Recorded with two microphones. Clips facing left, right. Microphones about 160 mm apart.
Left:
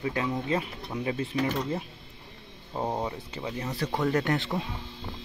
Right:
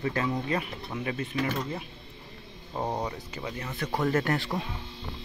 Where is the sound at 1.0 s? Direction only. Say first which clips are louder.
Left 2 dB; 25° left (ahead or behind).